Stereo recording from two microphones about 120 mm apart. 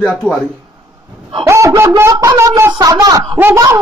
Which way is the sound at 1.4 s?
25° right (ahead or behind).